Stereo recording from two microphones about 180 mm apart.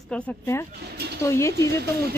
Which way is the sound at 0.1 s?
5° left (ahead or behind).